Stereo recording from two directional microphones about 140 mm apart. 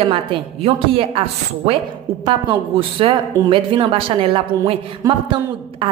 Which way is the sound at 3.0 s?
40° right (ahead or behind).